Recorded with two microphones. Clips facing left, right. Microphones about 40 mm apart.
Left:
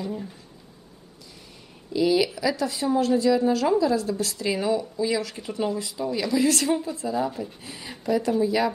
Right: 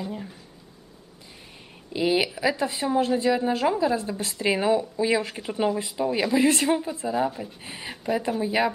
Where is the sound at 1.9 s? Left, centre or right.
Right.